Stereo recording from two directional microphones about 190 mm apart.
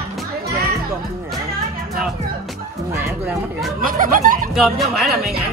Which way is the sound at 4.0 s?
45° right (ahead or behind).